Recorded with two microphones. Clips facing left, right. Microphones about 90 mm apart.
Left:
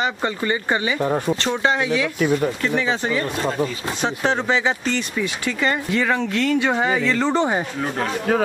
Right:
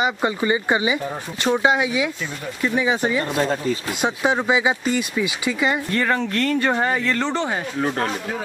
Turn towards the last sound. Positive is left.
turn(degrees=20)  # may be behind; listen again after turning